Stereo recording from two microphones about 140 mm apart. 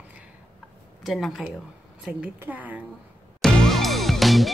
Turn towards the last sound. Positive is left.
turn(degrees=0)  # may be behind; listen again after turning